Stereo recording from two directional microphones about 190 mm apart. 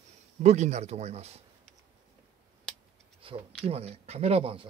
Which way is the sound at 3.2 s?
30° right (ahead or behind).